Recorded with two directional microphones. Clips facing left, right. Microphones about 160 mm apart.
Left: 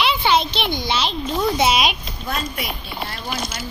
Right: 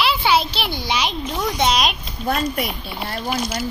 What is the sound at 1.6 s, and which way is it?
Speech, 5° left (ahead or behind).